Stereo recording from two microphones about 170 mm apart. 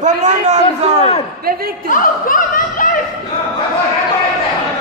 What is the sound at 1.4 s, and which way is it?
Speech, 60° right (ahead or behind).